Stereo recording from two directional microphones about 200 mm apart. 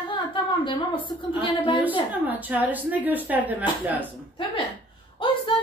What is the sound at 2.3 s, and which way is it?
Speech, 10° right (ahead or behind).